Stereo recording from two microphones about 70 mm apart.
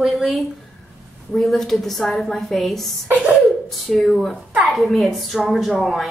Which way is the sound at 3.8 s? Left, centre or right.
Centre.